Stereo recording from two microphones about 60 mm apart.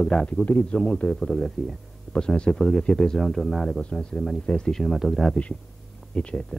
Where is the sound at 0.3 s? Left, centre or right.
Left.